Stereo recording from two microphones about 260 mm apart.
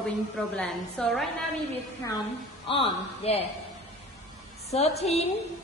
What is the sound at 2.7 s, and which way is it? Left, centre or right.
Speech, left.